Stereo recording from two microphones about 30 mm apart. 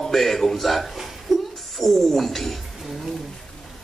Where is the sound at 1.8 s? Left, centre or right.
Centre.